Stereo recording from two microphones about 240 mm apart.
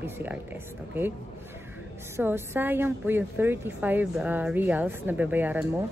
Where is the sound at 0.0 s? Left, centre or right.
Centre.